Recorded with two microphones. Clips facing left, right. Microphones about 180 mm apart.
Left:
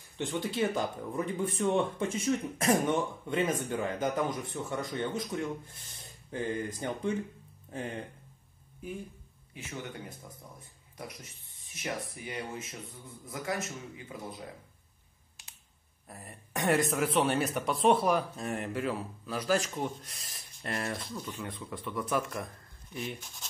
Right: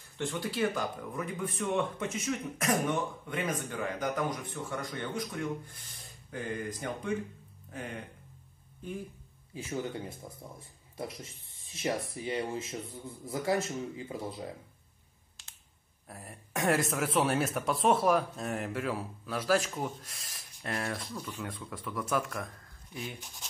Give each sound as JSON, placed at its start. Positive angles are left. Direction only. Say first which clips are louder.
{"t": 0.2, "sound": "speech", "louder": "left 1 dB", "side_deg": 25}
{"t": 8.8, "sound": "speech", "louder": "even", "side_deg": 10}
{"t": 9.5, "sound": "speech", "louder": "right 5 dB", "side_deg": -30}
{"t": 16.1, "sound": "speech", "louder": "even", "side_deg": 0}